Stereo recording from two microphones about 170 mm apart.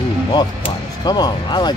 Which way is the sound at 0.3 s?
25° left (ahead or behind).